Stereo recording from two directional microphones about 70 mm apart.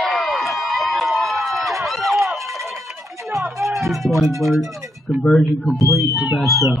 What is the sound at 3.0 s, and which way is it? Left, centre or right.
Music, right.